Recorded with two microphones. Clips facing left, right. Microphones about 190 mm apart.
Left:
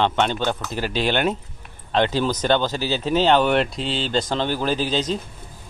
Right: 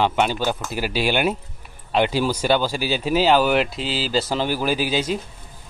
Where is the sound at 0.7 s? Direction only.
10° right (ahead or behind).